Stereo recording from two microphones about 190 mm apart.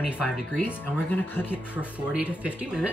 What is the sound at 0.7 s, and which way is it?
Speech, 10° left (ahead or behind).